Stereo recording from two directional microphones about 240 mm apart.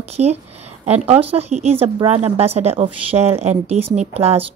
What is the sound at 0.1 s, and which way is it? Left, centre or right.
Speech, right.